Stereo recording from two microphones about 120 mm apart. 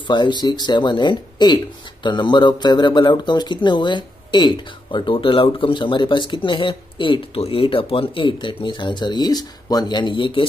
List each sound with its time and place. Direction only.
0.0 s speech: 40° left (ahead or behind)